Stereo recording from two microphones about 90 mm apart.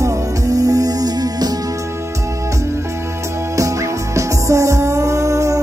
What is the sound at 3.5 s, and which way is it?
Music, 35° right (ahead or behind).